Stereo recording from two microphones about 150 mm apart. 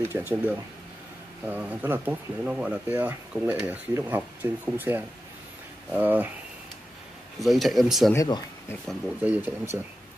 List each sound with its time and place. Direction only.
0.1 s speech: 15° right (ahead or behind)
7.3 s speech: centre (ahead or behind)
8.1 s speech: 20° left (ahead or behind)
8.8 s speech: 5° right (ahead or behind)